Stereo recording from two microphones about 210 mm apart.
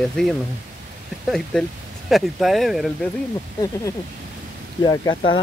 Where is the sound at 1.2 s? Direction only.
Centre (ahead or behind).